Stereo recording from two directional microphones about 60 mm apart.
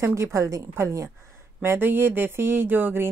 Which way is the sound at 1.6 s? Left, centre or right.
Right.